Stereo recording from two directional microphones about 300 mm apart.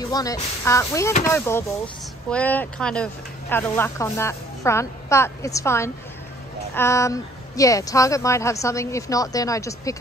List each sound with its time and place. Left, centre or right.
0.0 s speech: centre